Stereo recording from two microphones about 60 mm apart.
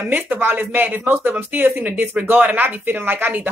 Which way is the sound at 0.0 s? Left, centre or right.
Right.